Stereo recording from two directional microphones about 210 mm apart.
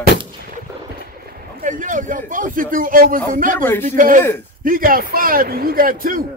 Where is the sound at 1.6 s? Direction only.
40° right (ahead or behind).